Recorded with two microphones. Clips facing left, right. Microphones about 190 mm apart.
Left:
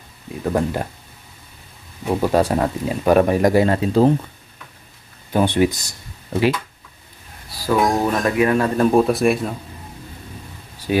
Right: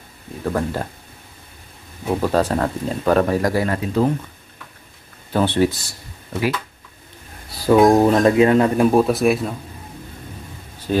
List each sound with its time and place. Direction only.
0.5 s speech: 20° left (ahead or behind)
2.1 s speech: 10° left (ahead or behind); by 4.1 s 30° left (ahead or behind)
5.3 s speech: 15° left (ahead or behind)
7.5 s speech: 20° right (ahead or behind)
8.9 s speech: centre (ahead or behind)
10.9 s speech: 10° left (ahead or behind)